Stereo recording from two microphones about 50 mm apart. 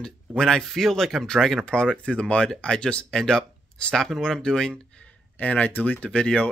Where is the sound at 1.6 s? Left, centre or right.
Centre.